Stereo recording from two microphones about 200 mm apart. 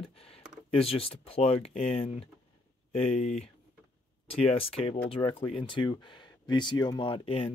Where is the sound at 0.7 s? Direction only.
30° left (ahead or behind).